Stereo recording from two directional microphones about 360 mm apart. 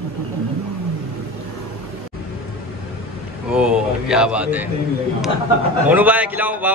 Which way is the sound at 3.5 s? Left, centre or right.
Centre.